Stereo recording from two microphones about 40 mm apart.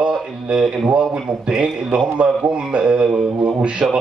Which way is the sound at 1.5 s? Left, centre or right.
Right.